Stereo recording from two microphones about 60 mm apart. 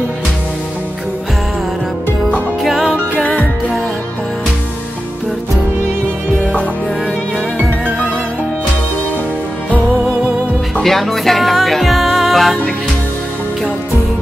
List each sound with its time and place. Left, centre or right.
2.6 s music: centre
3.2 s music: left
10.8 s music: centre